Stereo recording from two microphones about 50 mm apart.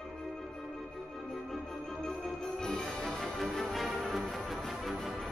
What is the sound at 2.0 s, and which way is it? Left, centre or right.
Music, centre.